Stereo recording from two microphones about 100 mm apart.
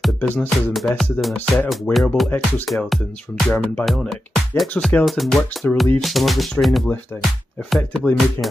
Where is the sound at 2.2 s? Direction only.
20° left (ahead or behind).